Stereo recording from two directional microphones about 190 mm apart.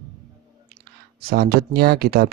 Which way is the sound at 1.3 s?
55° right (ahead or behind).